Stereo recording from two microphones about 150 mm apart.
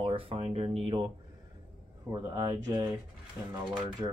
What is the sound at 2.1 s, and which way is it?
Speech, 20° right (ahead or behind).